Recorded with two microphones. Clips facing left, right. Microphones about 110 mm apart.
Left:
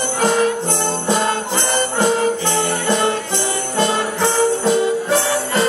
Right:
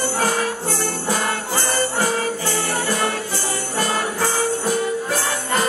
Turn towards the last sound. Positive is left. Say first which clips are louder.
# left 5 dB
turn(degrees=25)  # may be behind; listen again after turning